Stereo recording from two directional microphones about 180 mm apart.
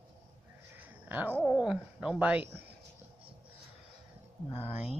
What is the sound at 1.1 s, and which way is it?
Speech, 10° right (ahead or behind).